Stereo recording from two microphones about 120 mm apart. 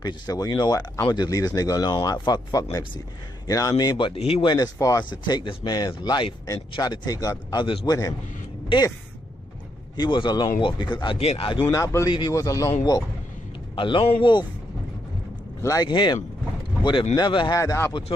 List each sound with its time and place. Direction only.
0.0 s speech: 35° left (ahead or behind)
4.1 s a man's voice: 55° left (ahead or behind)
4.5 s speech: 30° left (ahead or behind)
8.7 s a man's voice: 45° left (ahead or behind)
9.9 s a man's voice: 40° left (ahead or behind)
11.7 s a man's voice: 25° left (ahead or behind)
13.7 s a man's voice: 45° left (ahead or behind)
15.6 s speech: 30° left (ahead or behind)
17.6 s a man's voice: 20° left (ahead or behind)